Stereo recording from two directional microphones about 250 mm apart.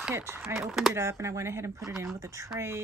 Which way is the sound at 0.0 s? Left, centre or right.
Centre.